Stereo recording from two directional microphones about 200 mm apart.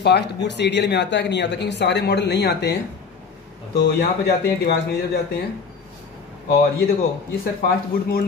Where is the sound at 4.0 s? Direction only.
50° left (ahead or behind).